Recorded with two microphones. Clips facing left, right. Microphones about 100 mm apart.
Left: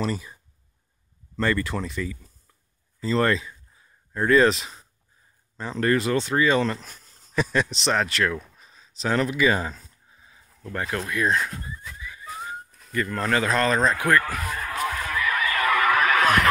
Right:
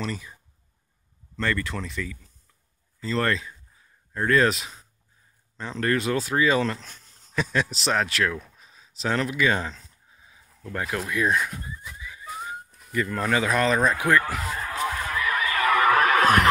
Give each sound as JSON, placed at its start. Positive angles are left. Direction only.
{"t": 0.0, "sound": "speech", "side_deg": 5}
{"t": 1.3, "sound": "speech", "side_deg": 5}
{"t": 14.8, "sound": "a sound", "side_deg": -20}